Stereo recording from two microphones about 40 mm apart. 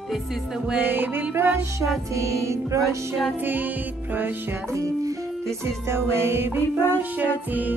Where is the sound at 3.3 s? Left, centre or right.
Right.